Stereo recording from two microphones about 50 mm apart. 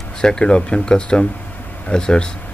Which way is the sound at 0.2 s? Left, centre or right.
Centre.